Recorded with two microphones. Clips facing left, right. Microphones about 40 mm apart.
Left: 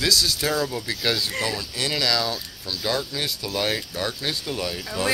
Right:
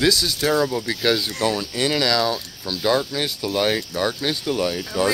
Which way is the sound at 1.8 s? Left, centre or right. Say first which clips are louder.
Right 4 dB; centre.